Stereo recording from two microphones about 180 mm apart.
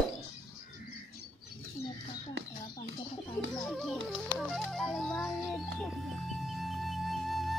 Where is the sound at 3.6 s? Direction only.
Centre (ahead or behind).